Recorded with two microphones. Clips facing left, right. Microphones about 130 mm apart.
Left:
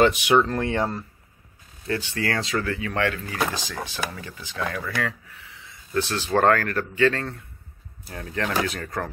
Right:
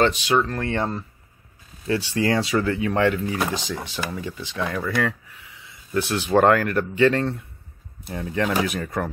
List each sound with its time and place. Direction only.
0.0 s speech: 15° left (ahead or behind)
1.9 s speech: 15° right (ahead or behind)